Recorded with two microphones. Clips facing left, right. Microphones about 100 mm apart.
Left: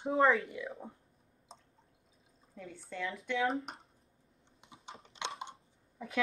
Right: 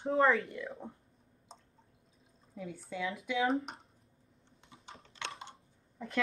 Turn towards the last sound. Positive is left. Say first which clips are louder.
# right 1 dB
turn(degrees=5)  # may be behind; listen again after turning